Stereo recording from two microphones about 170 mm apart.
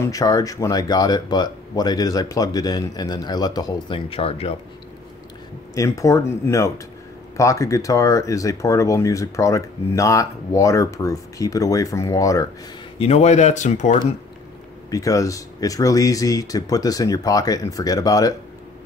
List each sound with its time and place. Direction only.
0.0 s speech: 20° left (ahead or behind)
5.8 s speech: 20° left (ahead or behind)
13.0 s speech: 40° left (ahead or behind)
14.9 s speech: 20° left (ahead or behind)